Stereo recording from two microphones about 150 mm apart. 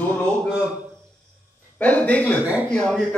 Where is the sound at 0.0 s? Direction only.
10° left (ahead or behind).